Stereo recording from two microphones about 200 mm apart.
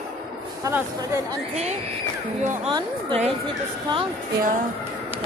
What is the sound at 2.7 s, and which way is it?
Speech, 25° right (ahead or behind).